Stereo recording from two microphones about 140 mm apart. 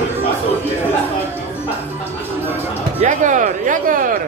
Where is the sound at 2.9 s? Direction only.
60° right (ahead or behind).